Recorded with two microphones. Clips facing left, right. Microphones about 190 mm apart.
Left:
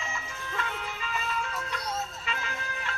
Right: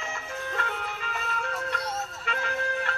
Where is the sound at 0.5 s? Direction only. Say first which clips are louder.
Left 2 dB; 55° right (ahead or behind).